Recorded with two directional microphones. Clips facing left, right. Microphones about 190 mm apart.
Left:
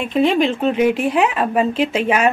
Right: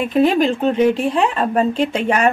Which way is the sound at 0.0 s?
Centre (ahead or behind).